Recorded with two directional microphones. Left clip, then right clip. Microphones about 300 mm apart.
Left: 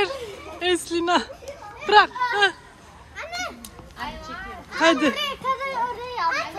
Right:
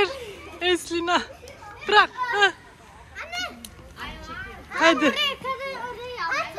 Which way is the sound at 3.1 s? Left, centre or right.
Centre.